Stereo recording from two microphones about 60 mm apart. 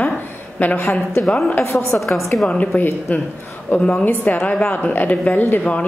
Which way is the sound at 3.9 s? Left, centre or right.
Left.